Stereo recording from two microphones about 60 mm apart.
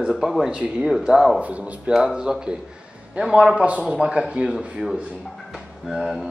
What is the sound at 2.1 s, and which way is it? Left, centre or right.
A man's voice, centre.